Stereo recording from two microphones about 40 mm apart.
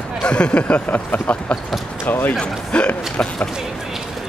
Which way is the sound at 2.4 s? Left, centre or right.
Left.